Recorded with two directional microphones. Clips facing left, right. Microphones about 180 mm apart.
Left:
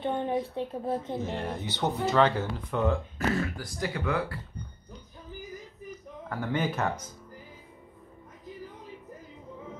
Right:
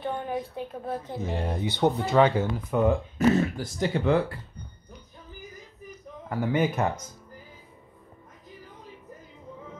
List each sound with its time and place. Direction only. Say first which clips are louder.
0.0 s a woman's voice: left 2 dB; 25° left (ahead or behind)
1.2 s speech: right 3 dB; 10° right (ahead or behind)
6.2 s speech: right 5 dB; 10° right (ahead or behind)